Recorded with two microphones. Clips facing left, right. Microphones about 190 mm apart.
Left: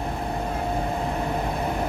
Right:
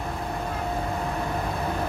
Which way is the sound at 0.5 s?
25° left (ahead or behind).